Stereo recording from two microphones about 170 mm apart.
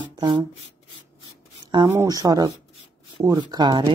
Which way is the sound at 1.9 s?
20° right (ahead or behind).